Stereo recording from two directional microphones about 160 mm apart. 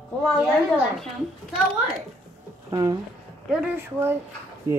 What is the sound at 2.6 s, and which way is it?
Speech, 20° right (ahead or behind).